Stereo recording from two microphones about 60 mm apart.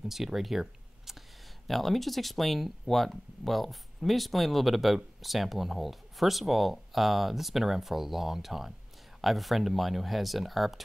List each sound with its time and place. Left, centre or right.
0.1 s speech: centre